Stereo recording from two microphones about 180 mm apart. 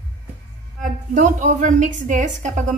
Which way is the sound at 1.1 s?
45° right (ahead or behind).